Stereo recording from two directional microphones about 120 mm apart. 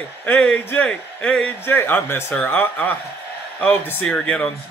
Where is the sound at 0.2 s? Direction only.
15° left (ahead or behind).